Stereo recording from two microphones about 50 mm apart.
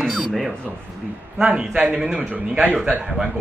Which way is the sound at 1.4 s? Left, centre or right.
Centre.